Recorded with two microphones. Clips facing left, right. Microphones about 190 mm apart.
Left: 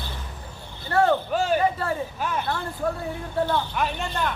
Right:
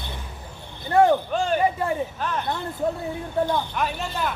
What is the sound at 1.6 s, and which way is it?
Speech, 15° right (ahead or behind).